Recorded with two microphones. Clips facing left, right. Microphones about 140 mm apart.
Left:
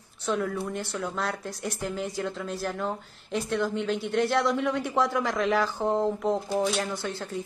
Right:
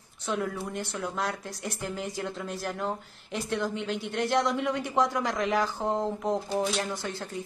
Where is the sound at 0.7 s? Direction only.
15° right (ahead or behind).